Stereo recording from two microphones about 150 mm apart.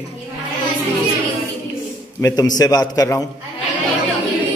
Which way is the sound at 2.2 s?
25° left (ahead or behind).